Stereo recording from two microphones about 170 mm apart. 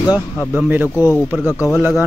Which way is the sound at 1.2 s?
10° right (ahead or behind).